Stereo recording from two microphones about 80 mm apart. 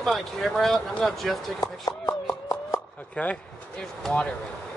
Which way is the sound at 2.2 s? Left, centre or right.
Left.